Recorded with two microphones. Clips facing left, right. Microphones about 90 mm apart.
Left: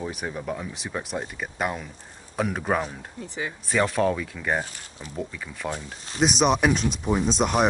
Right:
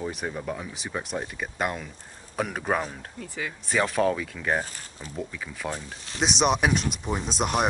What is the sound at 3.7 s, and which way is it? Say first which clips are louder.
Speech: left 1 dB; centre (ahead or behind).